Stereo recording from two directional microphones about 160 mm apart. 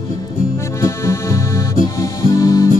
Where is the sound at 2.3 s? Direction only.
20° left (ahead or behind).